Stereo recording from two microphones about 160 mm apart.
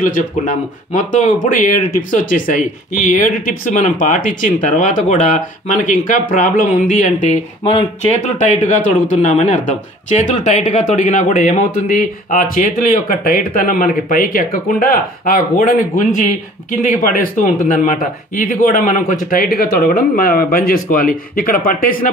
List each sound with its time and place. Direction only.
0.0 s speech: 55° left (ahead or behind)
7.6 s speech: 35° left (ahead or behind)
8.2 s speech: 50° left (ahead or behind)